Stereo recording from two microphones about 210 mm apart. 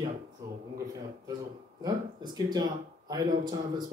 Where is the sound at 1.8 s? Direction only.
20° right (ahead or behind).